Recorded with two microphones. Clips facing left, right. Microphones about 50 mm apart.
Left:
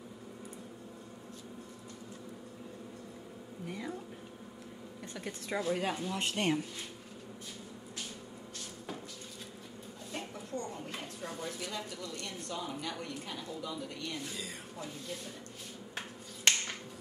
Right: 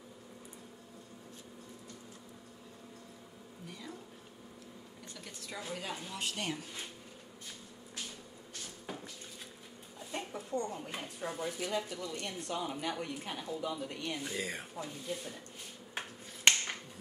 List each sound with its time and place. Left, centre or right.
3.6 s a sound: left
5.1 s speech: left
10.1 s a woman's voice: centre; by 14.1 s right
14.3 s speech: right
14.8 s a woman's voice: centre